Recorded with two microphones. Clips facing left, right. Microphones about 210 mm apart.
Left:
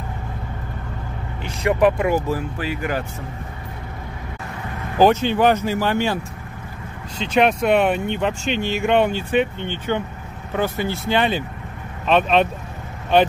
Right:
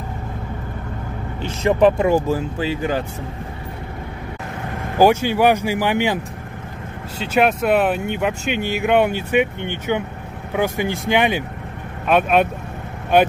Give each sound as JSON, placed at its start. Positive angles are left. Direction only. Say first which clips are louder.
{"t": 1.4, "sound": "speech", "louder": "right 2 dB", "side_deg": -25}
{"t": 4.9, "sound": "speech", "louder": "right 1 dB", "side_deg": -10}
{"t": 7.2, "sound": "speech", "louder": "even", "side_deg": -5}